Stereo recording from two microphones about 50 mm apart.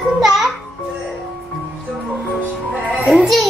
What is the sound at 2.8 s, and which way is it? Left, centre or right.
Music, right.